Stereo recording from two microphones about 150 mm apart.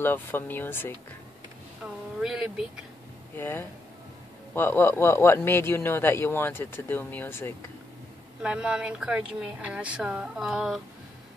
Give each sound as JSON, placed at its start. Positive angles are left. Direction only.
{"t": 0.0, "sound": "speech", "side_deg": 15}
{"t": 2.1, "sound": "speech", "side_deg": -5}
{"t": 3.3, "sound": "speech", "side_deg": 15}
{"t": 8.4, "sound": "speech", "side_deg": -5}